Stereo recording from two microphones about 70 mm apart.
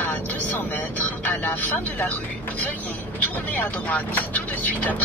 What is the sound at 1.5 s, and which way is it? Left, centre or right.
Speech, left.